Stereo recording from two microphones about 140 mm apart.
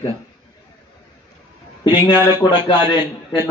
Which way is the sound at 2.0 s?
15° right (ahead or behind).